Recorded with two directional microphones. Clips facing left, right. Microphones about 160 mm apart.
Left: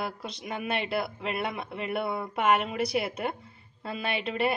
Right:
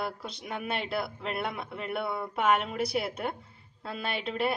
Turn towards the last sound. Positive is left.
turn(degrees=0)  # may be behind; listen again after turning